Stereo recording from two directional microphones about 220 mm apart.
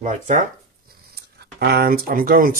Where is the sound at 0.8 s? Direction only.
45° right (ahead or behind).